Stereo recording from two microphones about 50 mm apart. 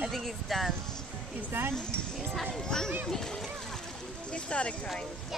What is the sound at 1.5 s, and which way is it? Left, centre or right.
Speech, right.